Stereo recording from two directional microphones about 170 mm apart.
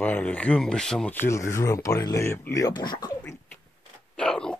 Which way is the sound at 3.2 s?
10° left (ahead or behind).